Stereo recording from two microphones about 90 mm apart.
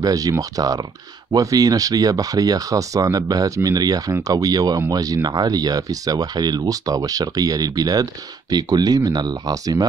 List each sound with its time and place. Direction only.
0.0 s speech: 40° right (ahead or behind)